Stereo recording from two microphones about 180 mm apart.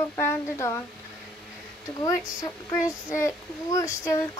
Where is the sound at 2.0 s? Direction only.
20° left (ahead or behind).